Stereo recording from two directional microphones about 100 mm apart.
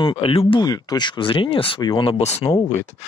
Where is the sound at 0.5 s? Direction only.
40° left (ahead or behind).